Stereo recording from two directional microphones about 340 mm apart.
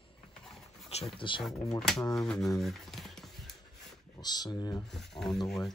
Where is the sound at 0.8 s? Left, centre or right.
Centre.